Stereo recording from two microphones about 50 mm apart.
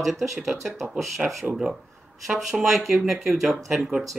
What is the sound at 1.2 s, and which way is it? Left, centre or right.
Speech, centre.